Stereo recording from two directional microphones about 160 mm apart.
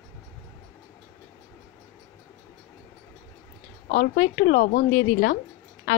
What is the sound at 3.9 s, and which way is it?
A woman's voice, 80° left.